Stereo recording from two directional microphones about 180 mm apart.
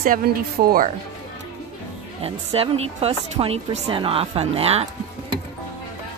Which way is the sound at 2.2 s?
30° right (ahead or behind).